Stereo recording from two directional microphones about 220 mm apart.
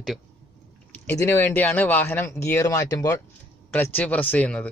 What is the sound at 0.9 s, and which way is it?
Speech, 10° left (ahead or behind).